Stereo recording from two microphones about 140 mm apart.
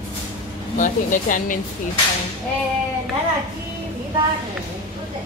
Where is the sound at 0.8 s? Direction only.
70° left (ahead or behind).